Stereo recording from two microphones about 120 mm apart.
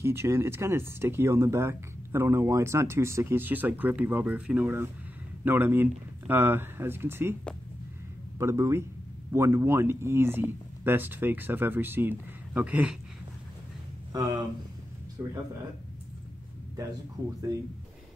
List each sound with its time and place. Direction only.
0.0 s speech: 20° right (ahead or behind)
8.4 s speech: 25° right (ahead or behind)
15.2 s speech: 20° right (ahead or behind)